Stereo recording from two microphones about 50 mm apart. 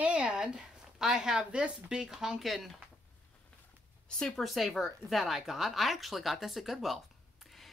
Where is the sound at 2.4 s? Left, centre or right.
Centre.